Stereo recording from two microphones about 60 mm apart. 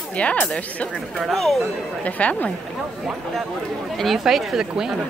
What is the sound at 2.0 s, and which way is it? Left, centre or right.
Speech, left.